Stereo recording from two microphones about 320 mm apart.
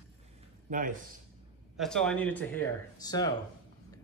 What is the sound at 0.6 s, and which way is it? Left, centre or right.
Speech, right.